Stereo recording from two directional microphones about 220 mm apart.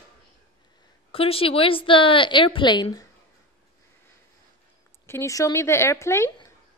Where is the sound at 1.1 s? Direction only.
25° left (ahead or behind).